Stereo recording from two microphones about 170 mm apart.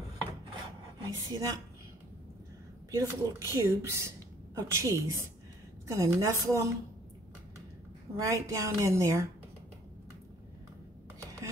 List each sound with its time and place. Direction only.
1.0 s a woman's voice: 20° right (ahead or behind)
2.9 s a woman's voice: 15° right (ahead or behind)
8.2 s speech: 20° right (ahead or behind)